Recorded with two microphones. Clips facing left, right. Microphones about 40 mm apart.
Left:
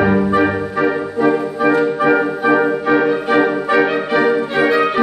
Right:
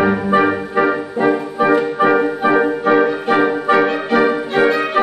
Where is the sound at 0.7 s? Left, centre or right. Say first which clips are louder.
Right 1 dB; centre.